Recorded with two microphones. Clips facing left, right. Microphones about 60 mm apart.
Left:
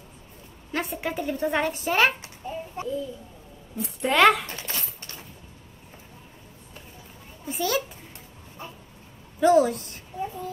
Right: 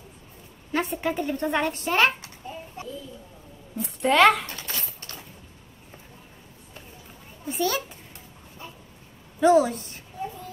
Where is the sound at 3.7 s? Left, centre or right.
Centre.